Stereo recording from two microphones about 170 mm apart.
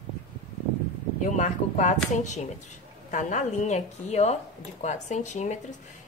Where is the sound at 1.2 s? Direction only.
45° left (ahead or behind).